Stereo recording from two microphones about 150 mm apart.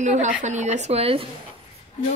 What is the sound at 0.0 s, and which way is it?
Speech, 55° right (ahead or behind).